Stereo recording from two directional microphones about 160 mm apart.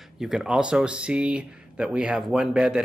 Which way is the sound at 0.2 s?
5° right (ahead or behind).